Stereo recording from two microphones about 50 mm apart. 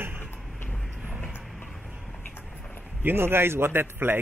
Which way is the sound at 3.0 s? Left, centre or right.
Right.